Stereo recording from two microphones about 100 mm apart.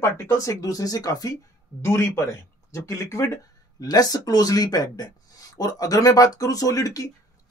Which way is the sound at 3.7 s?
40° left (ahead or behind).